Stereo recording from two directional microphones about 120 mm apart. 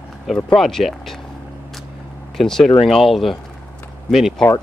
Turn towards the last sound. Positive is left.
turn(degrees=0)  # may be behind; listen again after turning